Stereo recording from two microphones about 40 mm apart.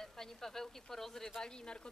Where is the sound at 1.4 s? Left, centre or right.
Left.